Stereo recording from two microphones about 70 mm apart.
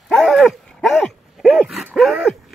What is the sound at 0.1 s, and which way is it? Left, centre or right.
Dog, centre.